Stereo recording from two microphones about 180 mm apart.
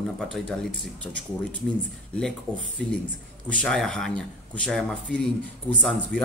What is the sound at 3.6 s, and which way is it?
A man's voice, 5° left (ahead or behind).